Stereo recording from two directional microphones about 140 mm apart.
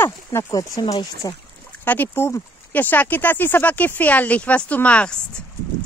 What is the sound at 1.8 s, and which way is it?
Speech, 15° left (ahead or behind).